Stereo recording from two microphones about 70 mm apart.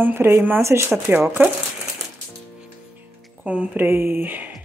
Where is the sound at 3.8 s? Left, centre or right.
Right.